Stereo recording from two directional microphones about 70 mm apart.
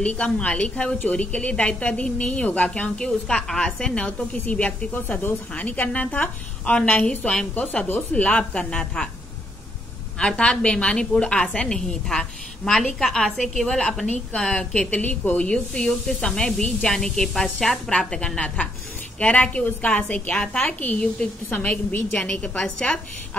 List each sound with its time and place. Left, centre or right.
0.0 s a woman's voice: centre
10.1 s a woman's voice: centre